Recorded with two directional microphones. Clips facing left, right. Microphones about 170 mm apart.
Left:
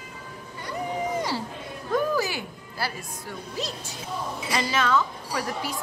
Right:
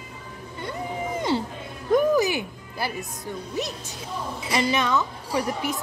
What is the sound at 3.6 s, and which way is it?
A woman's voice, 20° right (ahead or behind).